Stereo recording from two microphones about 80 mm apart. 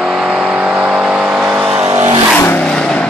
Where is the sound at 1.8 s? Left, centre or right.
Right.